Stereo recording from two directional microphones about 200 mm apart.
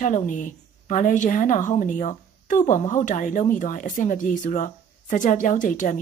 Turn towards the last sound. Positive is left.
turn(degrees=40)  # may be behind; listen again after turning